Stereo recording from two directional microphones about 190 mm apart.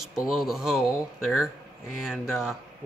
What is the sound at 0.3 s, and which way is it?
Speech, centre (ahead or behind).